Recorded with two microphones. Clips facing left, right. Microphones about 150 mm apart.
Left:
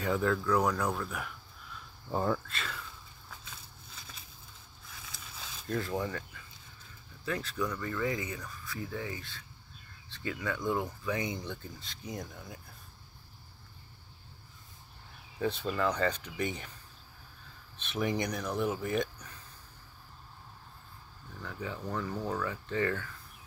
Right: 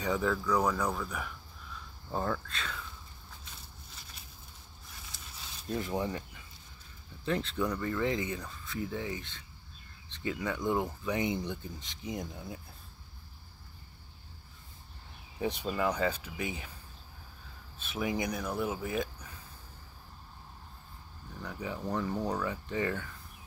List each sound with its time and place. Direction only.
0.0 s speech: centre (ahead or behind)
5.7 s speech: 20° right (ahead or behind)
15.3 s speech: 15° right (ahead or behind)
17.7 s speech: 5° right (ahead or behind)
21.4 s speech: 15° right (ahead or behind)